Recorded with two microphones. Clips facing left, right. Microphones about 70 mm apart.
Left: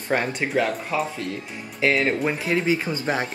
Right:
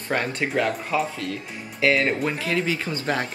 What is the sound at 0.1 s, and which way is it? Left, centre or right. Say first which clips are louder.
Speech: left 1 dB; centre.